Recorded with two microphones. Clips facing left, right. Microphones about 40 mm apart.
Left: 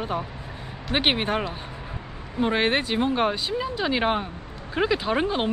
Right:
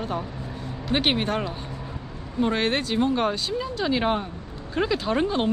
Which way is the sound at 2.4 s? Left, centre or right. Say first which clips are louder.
Left 1 dB; centre.